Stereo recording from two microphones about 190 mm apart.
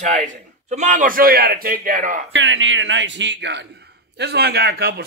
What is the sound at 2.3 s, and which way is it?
A man's voice, 75° right (ahead or behind).